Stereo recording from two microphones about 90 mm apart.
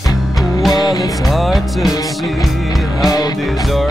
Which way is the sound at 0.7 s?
45° left (ahead or behind).